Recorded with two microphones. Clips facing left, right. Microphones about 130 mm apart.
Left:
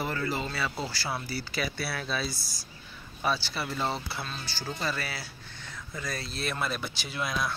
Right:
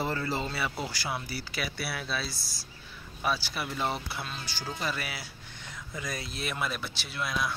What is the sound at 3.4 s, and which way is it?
Speech, 10° right (ahead or behind).